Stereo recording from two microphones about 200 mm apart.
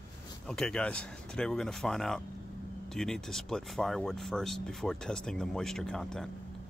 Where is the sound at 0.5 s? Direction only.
5° left (ahead or behind).